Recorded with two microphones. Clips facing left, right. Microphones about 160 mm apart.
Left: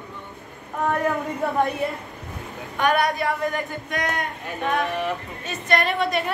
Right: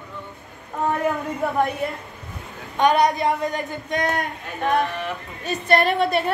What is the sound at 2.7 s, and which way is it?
A woman's voice, 20° right (ahead or behind).